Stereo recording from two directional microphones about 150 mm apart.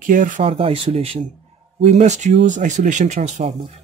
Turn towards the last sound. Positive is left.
turn(degrees=-50)  # may be behind; listen again after turning